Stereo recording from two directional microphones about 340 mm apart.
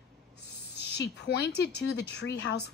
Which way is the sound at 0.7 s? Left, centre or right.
Left.